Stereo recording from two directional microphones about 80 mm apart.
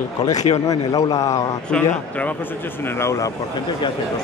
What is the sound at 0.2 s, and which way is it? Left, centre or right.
A man's voice, left.